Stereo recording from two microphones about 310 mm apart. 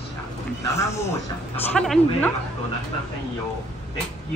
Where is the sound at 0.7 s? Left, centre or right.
Centre.